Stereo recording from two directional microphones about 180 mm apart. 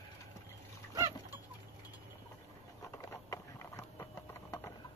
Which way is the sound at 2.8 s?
20° left (ahead or behind).